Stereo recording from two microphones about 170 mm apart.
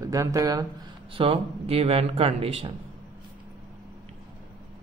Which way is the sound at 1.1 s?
30° right (ahead or behind).